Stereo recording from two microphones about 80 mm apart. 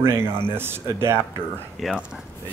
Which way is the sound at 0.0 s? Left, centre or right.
Right.